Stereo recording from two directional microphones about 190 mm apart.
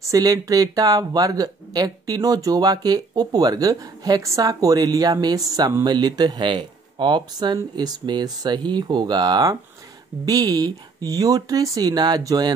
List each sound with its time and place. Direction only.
0.0 s speech: 20° right (ahead or behind)